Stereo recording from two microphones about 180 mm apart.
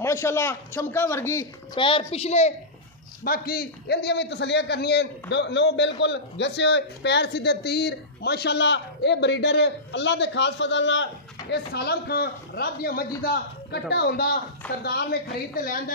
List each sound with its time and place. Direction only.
0.0 s speech: 15° left (ahead or behind)
1.8 s a woman's voice: 30° left (ahead or behind)
3.3 s a man's voice: 55° left (ahead or behind); by 11.1 s 85° left
11.5 s a man's voice: 60° left (ahead or behind)